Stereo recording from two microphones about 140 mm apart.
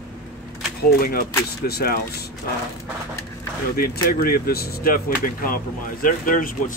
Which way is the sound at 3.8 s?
90° left.